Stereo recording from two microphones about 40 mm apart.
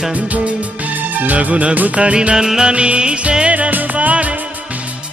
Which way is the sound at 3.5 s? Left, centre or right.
Right.